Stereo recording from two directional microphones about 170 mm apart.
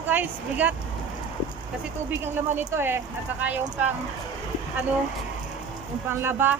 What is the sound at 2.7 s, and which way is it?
Speech, 15° right (ahead or behind).